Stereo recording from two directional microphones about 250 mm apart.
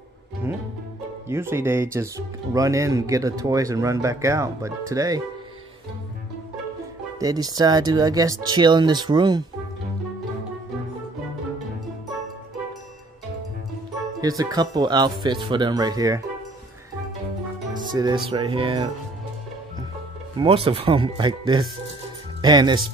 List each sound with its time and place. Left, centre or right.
1.3 s speech: centre
7.2 s speech: centre
14.2 s speech: centre
17.9 s speech: centre
20.3 s speech: right